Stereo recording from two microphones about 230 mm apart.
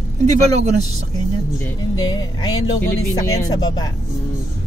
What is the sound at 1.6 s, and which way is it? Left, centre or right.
Music, centre.